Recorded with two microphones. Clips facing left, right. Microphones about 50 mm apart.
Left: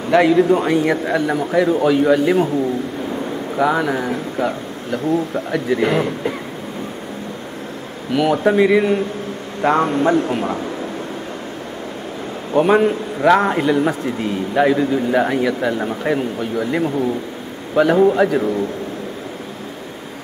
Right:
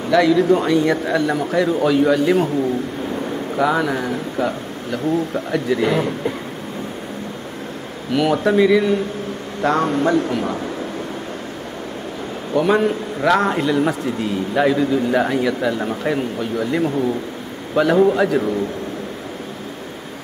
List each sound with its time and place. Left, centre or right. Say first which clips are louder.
0.1 s speech: left 1 dB; left
1.3 s a man's voice: left 2 dB; centre
3.5 s a man's voice: left 1 dB; centre
8.1 s a man's voice: left 1 dB; centre
8.5 s a man's voice: left 1 dB; left
12.5 s a man's voice: left 3 dB; centre